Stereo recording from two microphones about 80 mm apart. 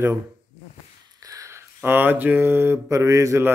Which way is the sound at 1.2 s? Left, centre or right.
Right.